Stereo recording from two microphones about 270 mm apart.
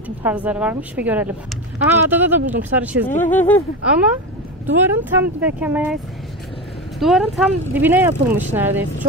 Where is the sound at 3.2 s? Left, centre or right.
Centre.